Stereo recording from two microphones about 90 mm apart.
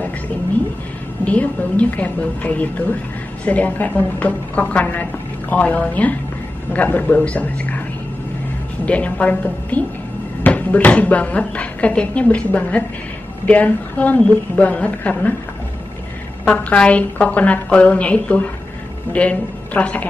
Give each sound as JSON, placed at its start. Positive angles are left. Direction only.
{"t": 1.2, "sound": "speech", "side_deg": 15}
{"t": 8.8, "sound": "speech", "side_deg": 15}
{"t": 16.4, "sound": "speech", "side_deg": 15}